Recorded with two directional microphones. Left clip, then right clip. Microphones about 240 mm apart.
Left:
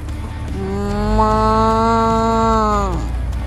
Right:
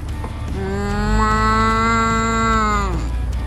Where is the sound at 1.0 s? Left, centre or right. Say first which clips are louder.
Left 3 dB; centre.